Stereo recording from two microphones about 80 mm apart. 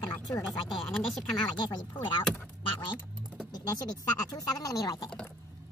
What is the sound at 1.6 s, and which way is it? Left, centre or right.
Speech, left.